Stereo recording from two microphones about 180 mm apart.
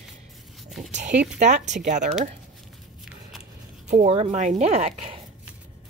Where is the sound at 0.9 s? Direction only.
40° right (ahead or behind).